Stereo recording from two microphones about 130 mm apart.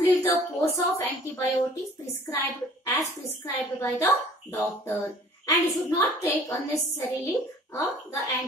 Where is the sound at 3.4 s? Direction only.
20° left (ahead or behind).